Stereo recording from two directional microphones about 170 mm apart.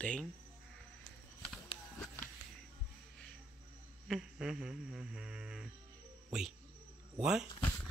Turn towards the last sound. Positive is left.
turn(degrees=-5)  # may be behind; listen again after turning